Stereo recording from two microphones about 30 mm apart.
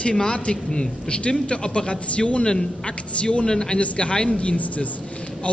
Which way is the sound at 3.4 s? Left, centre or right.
Left.